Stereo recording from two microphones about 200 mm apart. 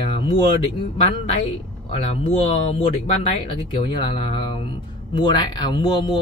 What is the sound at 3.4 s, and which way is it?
Speech, 25° left (ahead or behind).